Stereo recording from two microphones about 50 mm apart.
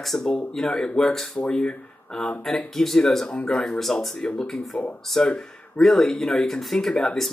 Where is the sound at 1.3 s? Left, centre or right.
Left.